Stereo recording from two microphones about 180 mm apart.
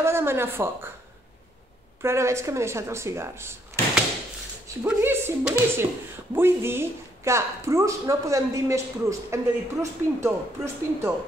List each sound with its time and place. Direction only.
0.0 s a woman's voice: 15° right (ahead or behind)
2.0 s a woman's voice: 15° right (ahead or behind)
4.8 s a woman's voice: 15° right (ahead or behind)